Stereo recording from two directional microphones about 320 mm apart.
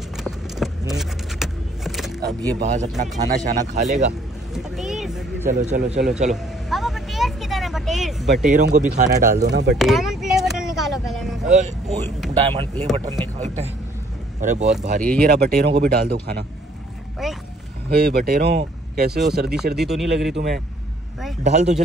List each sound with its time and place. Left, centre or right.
0.6 s vehicle: centre
0.9 s a sound: centre
2.2 s speech: centre
4.6 s speech: centre
5.5 s speech: right
6.3 s vehicle: centre
8.5 s speech: right
9.8 s vehicle: centre
11.4 s speech: right
17.2 s a sound: centre
17.8 s speech: right
19.8 s speech: centre
21.5 s speech: right